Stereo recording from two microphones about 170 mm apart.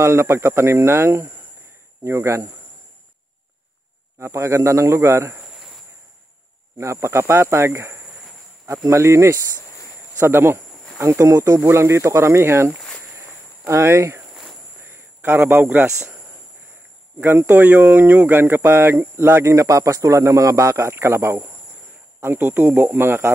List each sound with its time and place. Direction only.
0.0 s speech: 15° right (ahead or behind)
4.2 s speech: 15° right (ahead or behind)
6.8 s a man's voice: 15° right (ahead or behind)
17.2 s speech: 15° right (ahead or behind)